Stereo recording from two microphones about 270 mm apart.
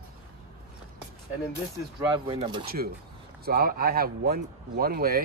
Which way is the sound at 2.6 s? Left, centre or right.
Right.